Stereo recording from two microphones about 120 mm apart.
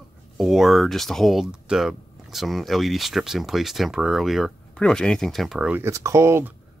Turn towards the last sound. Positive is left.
turn(degrees=-20)  # may be behind; listen again after turning